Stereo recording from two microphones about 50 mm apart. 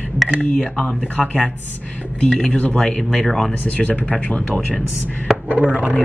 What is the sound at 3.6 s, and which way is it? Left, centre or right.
Speech, left.